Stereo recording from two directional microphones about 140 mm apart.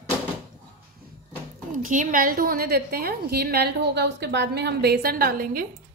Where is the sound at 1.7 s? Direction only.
70° right (ahead or behind); by 3.6 s 90° right.